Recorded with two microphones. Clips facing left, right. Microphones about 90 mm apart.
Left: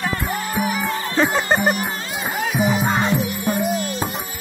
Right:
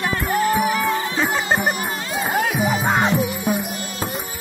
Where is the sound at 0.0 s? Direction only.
Centre (ahead or behind).